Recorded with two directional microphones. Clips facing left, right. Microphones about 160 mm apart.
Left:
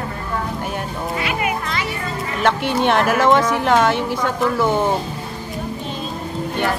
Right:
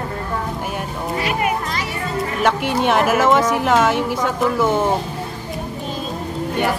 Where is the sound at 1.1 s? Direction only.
40° right (ahead or behind).